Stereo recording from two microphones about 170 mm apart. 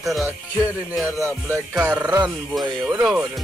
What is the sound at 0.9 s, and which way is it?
Speech, centre (ahead or behind).